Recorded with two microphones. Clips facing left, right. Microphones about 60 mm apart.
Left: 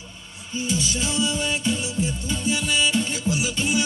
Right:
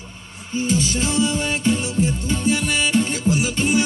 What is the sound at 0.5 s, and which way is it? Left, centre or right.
Music, right.